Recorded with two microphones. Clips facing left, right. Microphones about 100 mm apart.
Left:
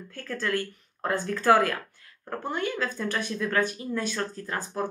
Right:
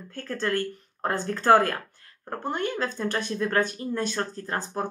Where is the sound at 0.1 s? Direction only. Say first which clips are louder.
Right 2 dB; 30° right (ahead or behind).